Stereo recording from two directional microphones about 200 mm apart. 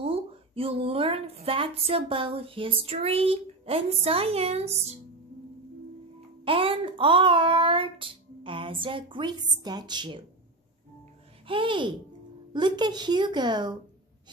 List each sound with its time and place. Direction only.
0.0 s speech: 30° right (ahead or behind)
6.4 s speech: 25° right (ahead or behind)
11.4 s speech: 25° right (ahead or behind)